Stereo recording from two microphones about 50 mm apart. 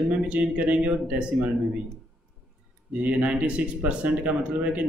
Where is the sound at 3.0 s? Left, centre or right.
Right.